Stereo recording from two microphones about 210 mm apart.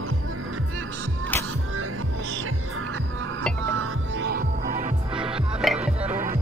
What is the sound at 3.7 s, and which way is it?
Music, 80° right.